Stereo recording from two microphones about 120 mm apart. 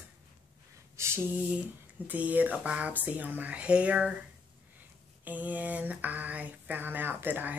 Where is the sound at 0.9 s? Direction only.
20° right (ahead or behind).